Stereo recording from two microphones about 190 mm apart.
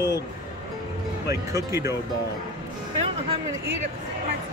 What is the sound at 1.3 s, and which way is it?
Speech, 15° right (ahead or behind).